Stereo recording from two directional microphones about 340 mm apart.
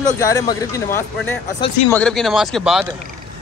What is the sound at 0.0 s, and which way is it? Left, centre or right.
Speech, centre.